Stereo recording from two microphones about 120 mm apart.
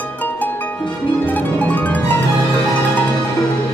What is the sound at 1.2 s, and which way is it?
Harp, 15° left (ahead or behind).